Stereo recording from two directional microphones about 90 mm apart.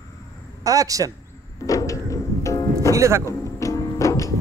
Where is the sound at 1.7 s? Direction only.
40° left (ahead or behind).